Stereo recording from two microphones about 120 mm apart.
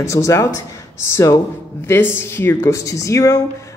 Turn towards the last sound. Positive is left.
turn(degrees=25)  # may be behind; listen again after turning